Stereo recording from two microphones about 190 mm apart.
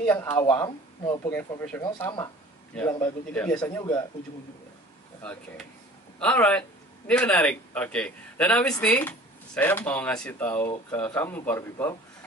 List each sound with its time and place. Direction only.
0.0 s speech: 10° left (ahead or behind)
6.1 s a man's voice: 5° left (ahead or behind)